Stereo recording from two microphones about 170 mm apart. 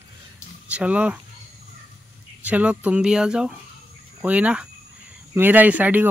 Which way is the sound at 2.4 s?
10° right (ahead or behind).